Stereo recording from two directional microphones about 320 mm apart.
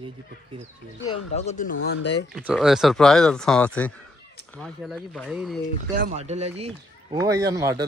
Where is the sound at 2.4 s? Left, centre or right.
Centre.